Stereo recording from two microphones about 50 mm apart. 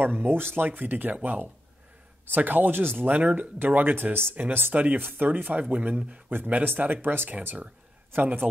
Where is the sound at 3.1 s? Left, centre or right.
Right.